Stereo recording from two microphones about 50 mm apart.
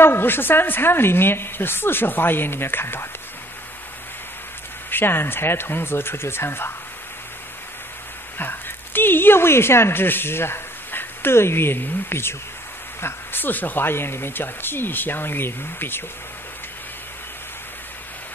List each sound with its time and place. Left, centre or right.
0.0 s a woman's voice: left
4.9 s a woman's voice: left
8.4 s a woman's voice: left